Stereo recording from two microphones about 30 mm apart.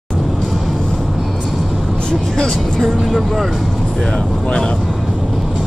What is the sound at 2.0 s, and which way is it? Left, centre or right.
Speech, left.